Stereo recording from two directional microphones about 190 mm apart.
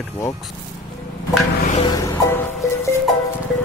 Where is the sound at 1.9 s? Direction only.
20° left (ahead or behind).